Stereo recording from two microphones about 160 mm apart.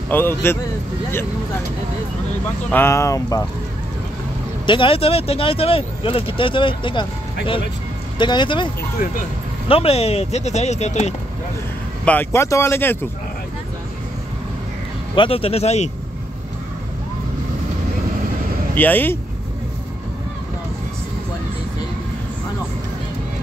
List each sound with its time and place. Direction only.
0.1 s speech: 15° left (ahead or behind)
2.7 s speech: 15° left (ahead or behind)
4.6 s speech: 35° left (ahead or behind)
8.2 s speech: 30° left (ahead or behind)
9.7 s speech: 40° left (ahead or behind)
12.0 s speech: 10° left (ahead or behind)
15.1 s speech: 35° left (ahead or behind)
18.8 s speech: 10° left (ahead or behind)